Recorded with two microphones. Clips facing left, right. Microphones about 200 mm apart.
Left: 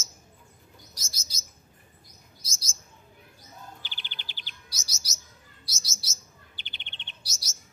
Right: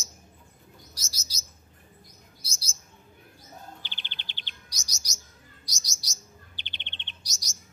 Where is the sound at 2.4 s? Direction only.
30° right (ahead or behind).